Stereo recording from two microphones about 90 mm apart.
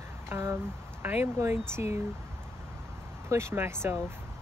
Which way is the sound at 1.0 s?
25° right (ahead or behind).